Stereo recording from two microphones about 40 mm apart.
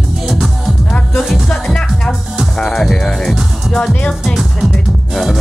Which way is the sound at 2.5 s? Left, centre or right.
Centre.